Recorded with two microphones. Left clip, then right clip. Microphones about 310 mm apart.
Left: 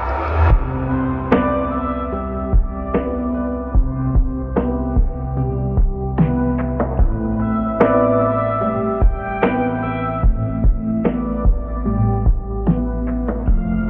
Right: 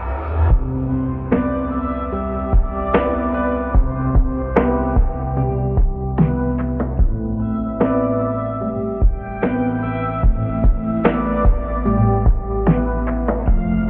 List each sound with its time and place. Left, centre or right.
0.8 s music: left
1.4 s music: centre
2.9 s music: right
4.0 s music: right
4.7 s music: right
6.1 s music: centre
7.4 s music: left
9.4 s music: centre
10.5 s music: centre
11.0 s music: right
11.8 s music: right
12.8 s music: right